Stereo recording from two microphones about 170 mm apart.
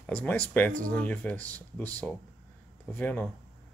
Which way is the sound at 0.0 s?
5° left (ahead or behind).